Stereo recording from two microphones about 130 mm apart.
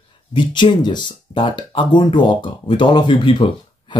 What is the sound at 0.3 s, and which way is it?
Speech, 35° left (ahead or behind).